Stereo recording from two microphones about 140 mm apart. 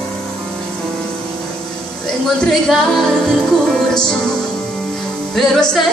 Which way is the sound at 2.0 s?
Centre (ahead or behind).